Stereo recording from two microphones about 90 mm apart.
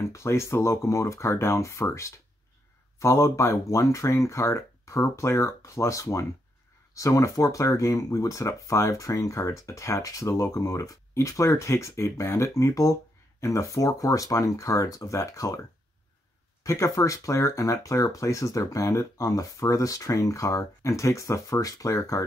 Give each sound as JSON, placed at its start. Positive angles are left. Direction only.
{"t": 0.0, "sound": "speech", "side_deg": 30}
{"t": 16.6, "sound": "speech", "side_deg": 35}